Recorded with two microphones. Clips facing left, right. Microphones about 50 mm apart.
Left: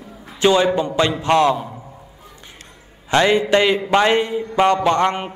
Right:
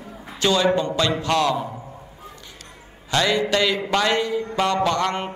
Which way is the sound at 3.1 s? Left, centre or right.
Left.